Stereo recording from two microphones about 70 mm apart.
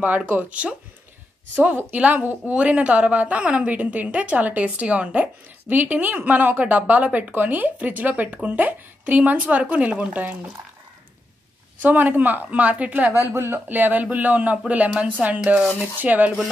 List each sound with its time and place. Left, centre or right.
0.2 s speech: right
11.8 s speech: right
13.2 s speech: right